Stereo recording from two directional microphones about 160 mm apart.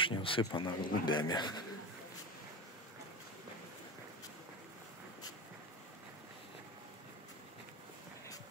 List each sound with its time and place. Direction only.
0.0 s a man's voice: 35° left (ahead or behind)